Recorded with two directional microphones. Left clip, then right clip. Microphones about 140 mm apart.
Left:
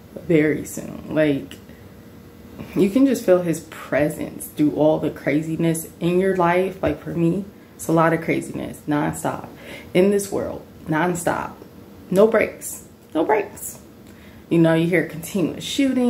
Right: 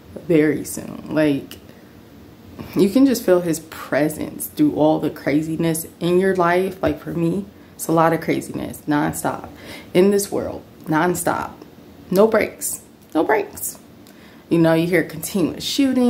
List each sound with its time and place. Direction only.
0.3 s speech: 25° right (ahead or behind)
2.7 s speech: 35° right (ahead or behind)
14.5 s speech: 35° right (ahead or behind)